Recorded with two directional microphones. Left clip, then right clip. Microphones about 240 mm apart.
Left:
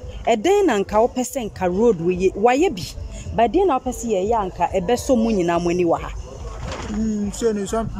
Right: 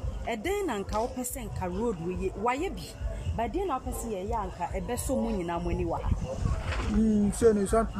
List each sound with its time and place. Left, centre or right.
0.2 s a woman's voice: left
7.2 s speech: centre